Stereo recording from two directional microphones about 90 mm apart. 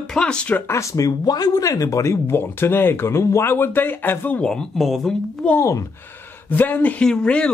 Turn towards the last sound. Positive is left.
turn(degrees=10)  # may be behind; listen again after turning